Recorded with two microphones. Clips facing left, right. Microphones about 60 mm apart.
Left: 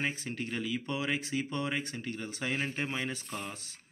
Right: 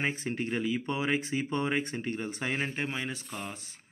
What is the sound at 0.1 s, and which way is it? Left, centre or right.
Speech, right.